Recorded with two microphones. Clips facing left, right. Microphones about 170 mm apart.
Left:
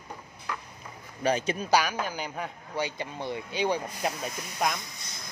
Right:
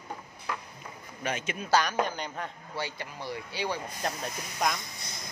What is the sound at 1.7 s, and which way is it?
A woman's voice, 10° left (ahead or behind).